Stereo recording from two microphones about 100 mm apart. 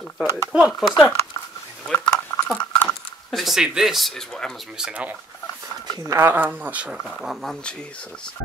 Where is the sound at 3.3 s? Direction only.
Centre (ahead or behind).